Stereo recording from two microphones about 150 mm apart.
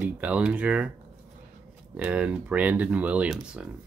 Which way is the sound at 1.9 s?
10° right (ahead or behind).